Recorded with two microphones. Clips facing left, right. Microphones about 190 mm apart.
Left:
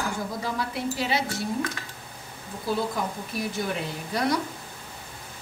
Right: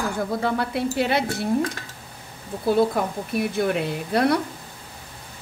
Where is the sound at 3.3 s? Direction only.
60° right (ahead or behind).